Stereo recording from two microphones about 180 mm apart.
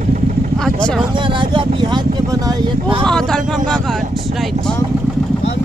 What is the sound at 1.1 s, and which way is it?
Speech, 25° right (ahead or behind).